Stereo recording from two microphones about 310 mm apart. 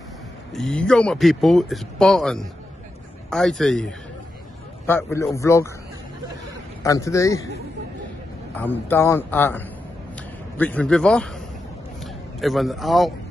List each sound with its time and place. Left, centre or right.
0.5 s a man's voice: centre
6.8 s a man's voice: centre
8.5 s a man's voice: centre